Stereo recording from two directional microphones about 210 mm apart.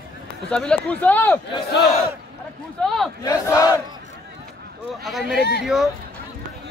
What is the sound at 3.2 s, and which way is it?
Speech, 15° left (ahead or behind).